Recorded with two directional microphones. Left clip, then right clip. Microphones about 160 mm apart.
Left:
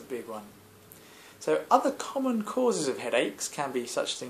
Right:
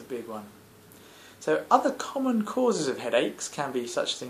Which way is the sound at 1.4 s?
10° left (ahead or behind).